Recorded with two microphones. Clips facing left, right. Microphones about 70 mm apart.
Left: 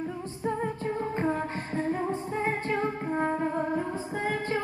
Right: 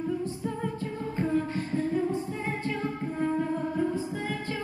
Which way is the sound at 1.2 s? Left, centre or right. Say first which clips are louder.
Right 1 dB; left.